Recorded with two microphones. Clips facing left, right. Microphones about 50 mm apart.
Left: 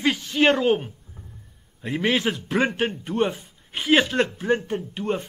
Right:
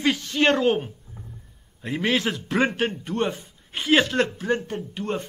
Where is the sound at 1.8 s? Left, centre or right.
Centre.